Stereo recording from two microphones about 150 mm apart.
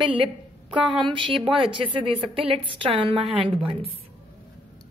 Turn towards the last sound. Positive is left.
turn(degrees=-40)  # may be behind; listen again after turning